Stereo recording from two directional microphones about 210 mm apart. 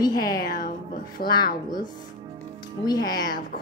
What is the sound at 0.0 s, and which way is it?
A woman's voice, 20° left (ahead or behind).